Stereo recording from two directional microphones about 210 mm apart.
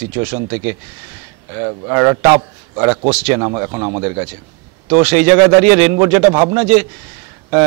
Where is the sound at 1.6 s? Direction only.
15° right (ahead or behind).